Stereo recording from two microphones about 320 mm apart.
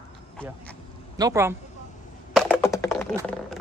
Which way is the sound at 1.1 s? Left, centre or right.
Centre.